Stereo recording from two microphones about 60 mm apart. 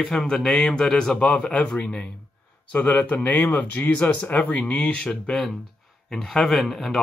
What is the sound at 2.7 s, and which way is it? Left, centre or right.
Speech, left.